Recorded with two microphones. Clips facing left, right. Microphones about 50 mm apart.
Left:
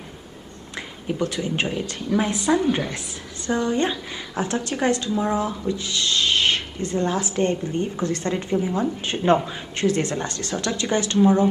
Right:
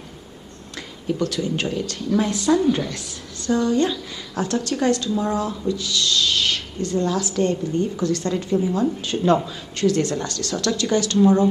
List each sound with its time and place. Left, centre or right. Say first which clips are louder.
0.7 s a woman's voice: right 1 dB; left